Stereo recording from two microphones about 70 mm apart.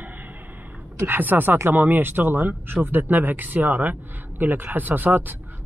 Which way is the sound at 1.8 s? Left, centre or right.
Right.